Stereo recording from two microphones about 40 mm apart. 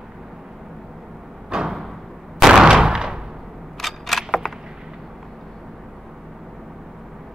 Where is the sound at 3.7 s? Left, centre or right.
Centre.